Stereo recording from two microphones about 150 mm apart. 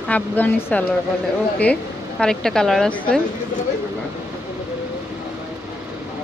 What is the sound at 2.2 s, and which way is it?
A woman's voice, 5° left (ahead or behind).